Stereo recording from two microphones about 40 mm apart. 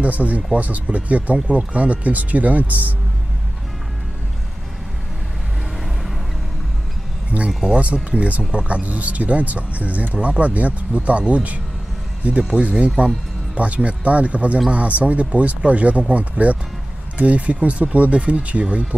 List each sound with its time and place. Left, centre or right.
0.0 s speech: right
7.2 s a sound: right
7.6 s speech: right